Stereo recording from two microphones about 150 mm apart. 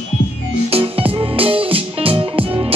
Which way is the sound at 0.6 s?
40° right (ahead or behind).